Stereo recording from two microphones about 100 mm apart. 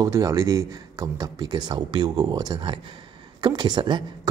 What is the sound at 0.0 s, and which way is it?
Speech, 35° right (ahead or behind).